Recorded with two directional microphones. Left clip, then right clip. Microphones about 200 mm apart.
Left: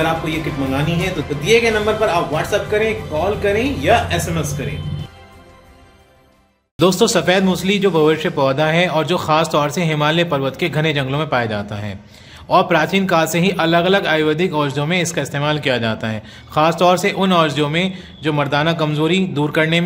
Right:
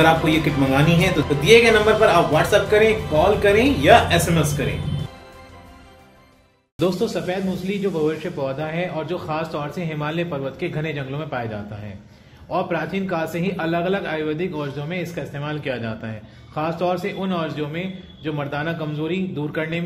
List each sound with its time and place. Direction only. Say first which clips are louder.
0.0 s a man's voice: right 3 dB; centre (ahead or behind)
6.8 s a man's voice: left 8 dB; 25° left (ahead or behind)